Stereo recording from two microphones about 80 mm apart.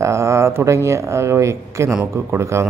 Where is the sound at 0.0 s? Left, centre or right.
Right.